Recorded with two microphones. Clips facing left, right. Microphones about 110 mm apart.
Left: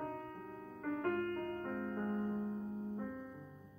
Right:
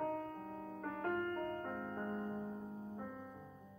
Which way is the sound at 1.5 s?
20° right (ahead or behind).